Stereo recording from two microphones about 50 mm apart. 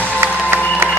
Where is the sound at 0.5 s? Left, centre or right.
Right.